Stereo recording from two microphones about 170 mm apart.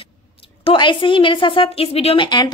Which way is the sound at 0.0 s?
35° left (ahead or behind).